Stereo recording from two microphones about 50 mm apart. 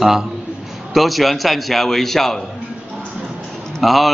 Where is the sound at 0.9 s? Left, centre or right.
Centre.